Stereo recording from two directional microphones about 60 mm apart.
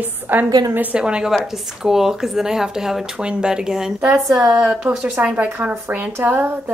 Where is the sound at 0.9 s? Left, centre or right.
Centre.